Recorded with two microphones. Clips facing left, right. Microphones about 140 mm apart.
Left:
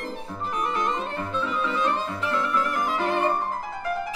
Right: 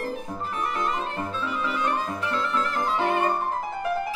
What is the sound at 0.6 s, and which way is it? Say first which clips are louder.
Music: left 1 dB; 25° left (ahead or behind).